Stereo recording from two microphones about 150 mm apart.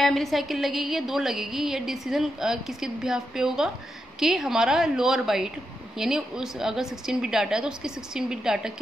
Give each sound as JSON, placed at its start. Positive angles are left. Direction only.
{"t": 0.0, "sound": "a woman's voice", "side_deg": 0}